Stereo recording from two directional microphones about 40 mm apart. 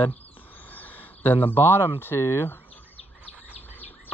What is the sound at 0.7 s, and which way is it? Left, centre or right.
Speech, left.